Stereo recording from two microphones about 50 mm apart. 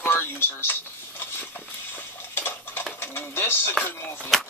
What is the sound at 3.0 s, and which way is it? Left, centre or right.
Sewing machine, left.